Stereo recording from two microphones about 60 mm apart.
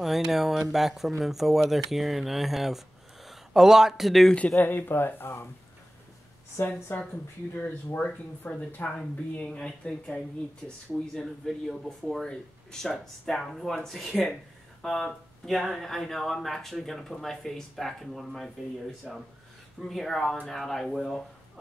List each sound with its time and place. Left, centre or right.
0.0 s speech: centre
4.6 s speech: left
6.5 s speech: left; by 10.2 s centre
11.1 s speech: centre
12.9 s speech: centre
19.1 s speech: centre
19.9 s speech: centre